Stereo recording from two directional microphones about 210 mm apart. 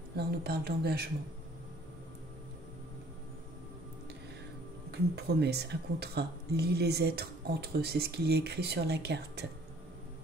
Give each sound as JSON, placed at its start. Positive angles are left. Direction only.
{"t": 0.1, "sound": "speech", "side_deg": -50}
{"t": 5.1, "sound": "speech", "side_deg": -50}